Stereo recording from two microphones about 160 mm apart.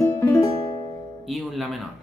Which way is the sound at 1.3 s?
Centre (ahead or behind).